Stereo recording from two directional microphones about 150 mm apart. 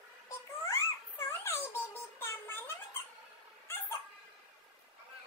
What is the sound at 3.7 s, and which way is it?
Dog, 15° left (ahead or behind).